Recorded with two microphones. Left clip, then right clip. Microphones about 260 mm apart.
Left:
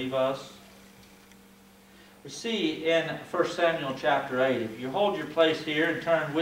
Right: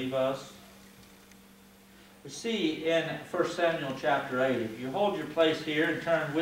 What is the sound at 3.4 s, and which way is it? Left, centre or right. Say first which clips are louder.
A man's voice: left 3 dB; centre.